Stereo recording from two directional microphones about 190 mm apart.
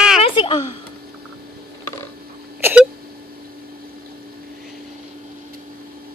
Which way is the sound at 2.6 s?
10° right (ahead or behind).